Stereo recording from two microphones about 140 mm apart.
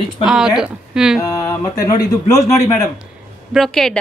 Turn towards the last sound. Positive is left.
turn(degrees=0)  # may be behind; listen again after turning